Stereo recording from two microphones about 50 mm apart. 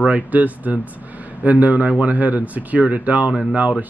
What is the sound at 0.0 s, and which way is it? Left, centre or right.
Speech, right.